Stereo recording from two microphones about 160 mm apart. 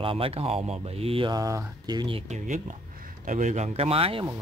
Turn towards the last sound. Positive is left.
turn(degrees=-35)  # may be behind; listen again after turning